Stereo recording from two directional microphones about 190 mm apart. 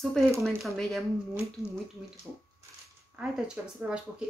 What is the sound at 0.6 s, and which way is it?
Speech, centre (ahead or behind).